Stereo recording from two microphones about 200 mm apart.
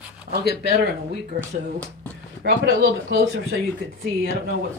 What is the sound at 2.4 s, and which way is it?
Speech, 55° right (ahead or behind).